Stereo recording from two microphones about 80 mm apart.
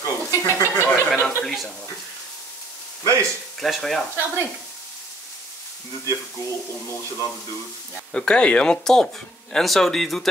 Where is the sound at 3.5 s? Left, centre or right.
Centre.